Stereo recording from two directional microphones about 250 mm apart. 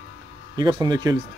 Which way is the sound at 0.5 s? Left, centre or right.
Centre.